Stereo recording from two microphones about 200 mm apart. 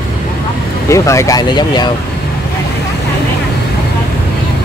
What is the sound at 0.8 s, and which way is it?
Speech, 15° left (ahead or behind).